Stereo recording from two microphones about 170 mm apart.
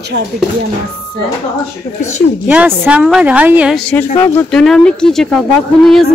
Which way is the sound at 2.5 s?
10° right (ahead or behind).